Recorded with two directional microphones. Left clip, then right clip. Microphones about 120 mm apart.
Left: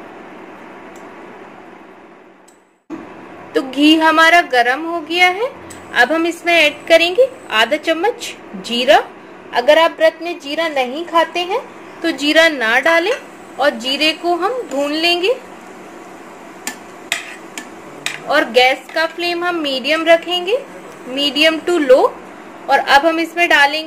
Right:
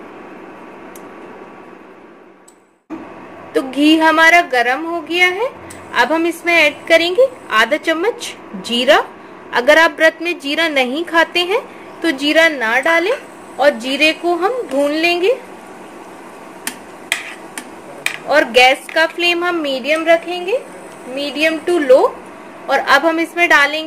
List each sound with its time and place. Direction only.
3.5 s speech: 5° right (ahead or behind)
9.5 s a man's voice: 40° right (ahead or behind)
12.2 s speech: centre (ahead or behind)
12.5 s a woman's voice: 10° left (ahead or behind)
13.6 s a woman's voice: 20° right (ahead or behind)
18.3 s a woman's voice: 10° right (ahead or behind)
18.9 s a woman's voice: 30° right (ahead or behind)
19.5 s speech: centre (ahead or behind)
21.1 s a woman's voice: 25° left (ahead or behind)
22.7 s a woman's voice: 5° right (ahead or behind)